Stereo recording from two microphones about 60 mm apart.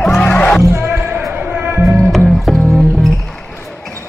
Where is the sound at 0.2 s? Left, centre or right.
Centre.